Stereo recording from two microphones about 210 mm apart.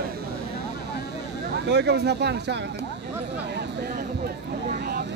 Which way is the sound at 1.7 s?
55° right (ahead or behind).